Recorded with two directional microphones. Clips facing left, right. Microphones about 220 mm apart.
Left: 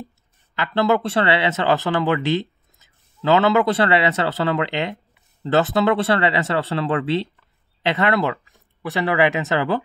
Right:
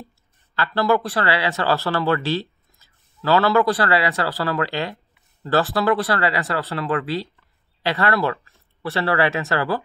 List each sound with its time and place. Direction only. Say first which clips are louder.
0.6 s speech: left 1 dB; 20° left (ahead or behind)